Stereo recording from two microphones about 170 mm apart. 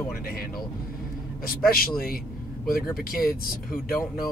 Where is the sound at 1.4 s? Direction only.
60° left (ahead or behind).